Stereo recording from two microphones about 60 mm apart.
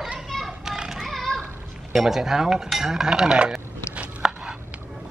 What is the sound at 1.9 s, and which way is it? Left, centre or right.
Dishes, centre.